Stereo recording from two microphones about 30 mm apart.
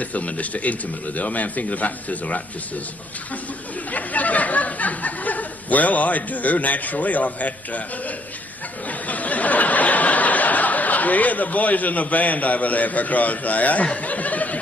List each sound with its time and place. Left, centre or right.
0.0 s speech: left
3.9 s speech: left
9.0 s a sound: left